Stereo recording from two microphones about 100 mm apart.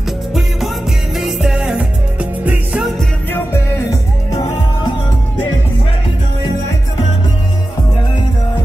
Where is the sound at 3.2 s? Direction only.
20° left (ahead or behind).